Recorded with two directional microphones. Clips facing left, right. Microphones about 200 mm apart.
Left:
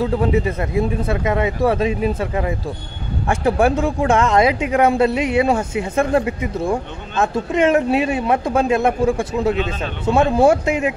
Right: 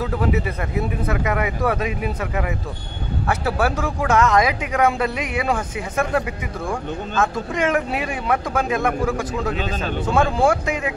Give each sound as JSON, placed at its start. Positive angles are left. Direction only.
{"t": 0.0, "sound": "speech", "side_deg": 30}